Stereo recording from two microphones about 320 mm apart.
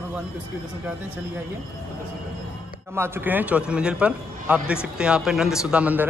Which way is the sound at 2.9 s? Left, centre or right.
Centre.